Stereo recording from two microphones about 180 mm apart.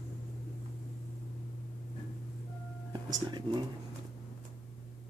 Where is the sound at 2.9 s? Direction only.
25° right (ahead or behind).